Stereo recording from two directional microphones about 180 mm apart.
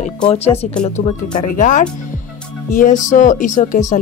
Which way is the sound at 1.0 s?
65° left (ahead or behind).